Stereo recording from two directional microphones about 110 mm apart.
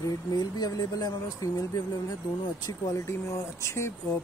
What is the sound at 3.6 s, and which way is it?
Speech, 25° left (ahead or behind).